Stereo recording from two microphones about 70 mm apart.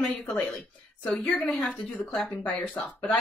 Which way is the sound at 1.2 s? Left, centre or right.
Left.